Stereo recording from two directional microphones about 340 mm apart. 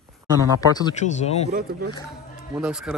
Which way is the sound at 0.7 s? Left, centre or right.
Centre.